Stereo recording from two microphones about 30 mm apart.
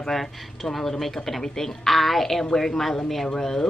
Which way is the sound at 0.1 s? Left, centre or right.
Centre.